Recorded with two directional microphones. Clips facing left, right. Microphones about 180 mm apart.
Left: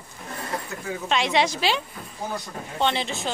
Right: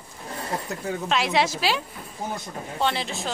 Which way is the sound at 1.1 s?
5° right (ahead or behind).